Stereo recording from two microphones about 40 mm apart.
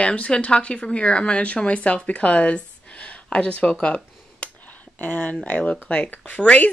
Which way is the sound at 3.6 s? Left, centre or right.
Left.